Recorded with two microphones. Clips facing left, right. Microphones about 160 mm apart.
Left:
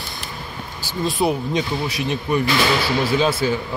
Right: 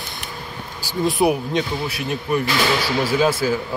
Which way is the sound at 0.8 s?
15° right (ahead or behind).